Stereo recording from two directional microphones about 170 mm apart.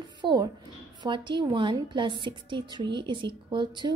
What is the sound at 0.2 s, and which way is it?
A woman's voice, 25° right (ahead or behind).